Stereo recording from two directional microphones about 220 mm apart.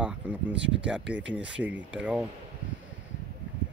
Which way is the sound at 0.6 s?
55° right (ahead or behind).